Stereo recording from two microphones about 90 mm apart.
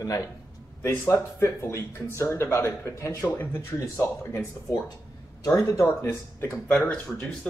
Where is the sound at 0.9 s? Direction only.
20° left (ahead or behind).